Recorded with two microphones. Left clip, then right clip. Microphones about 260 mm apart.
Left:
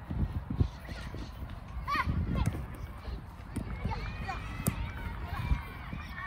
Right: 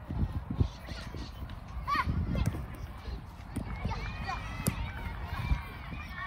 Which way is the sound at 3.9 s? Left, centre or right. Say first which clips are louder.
Right 1 dB; right.